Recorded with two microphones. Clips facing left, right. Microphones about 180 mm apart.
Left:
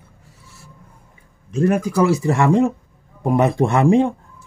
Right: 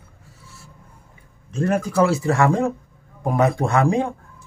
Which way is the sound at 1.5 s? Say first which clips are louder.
Left 3 dB; 15° left (ahead or behind).